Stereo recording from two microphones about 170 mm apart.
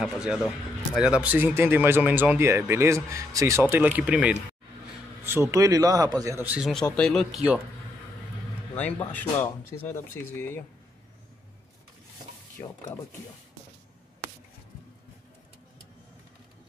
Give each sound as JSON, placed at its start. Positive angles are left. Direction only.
{"t": 0.0, "sound": "a man's voice", "side_deg": -5}
{"t": 6.7, "sound": "speech", "side_deg": 5}
{"t": 8.7, "sound": "speech", "side_deg": 10}